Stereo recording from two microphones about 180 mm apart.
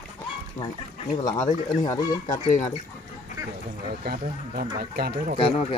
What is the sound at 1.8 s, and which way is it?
Speech, 20° left (ahead or behind).